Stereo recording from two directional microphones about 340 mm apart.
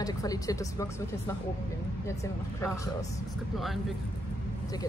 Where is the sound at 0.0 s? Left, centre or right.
Centre.